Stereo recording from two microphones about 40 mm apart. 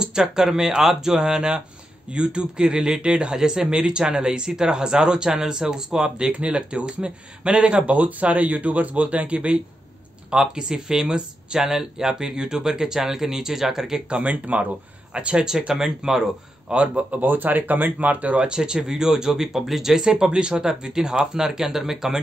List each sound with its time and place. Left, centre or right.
0.0 s speech: centre; by 9.6 s right
10.3 s speech: centre
14.0 s speech: right
14.3 s speech: right
15.1 s speech: right
15.7 s speech: centre
16.7 s speech: right
17.2 s speech: right
18.4 s speech: centre